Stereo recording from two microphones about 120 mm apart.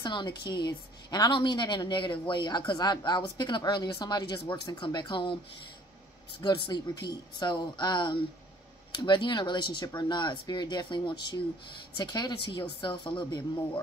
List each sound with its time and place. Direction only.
0.0 s a woman's voice: 40° left (ahead or behind)
6.6 s a woman's voice: 40° left (ahead or behind)